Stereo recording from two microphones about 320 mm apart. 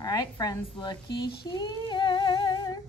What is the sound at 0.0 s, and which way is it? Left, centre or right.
Speech, centre.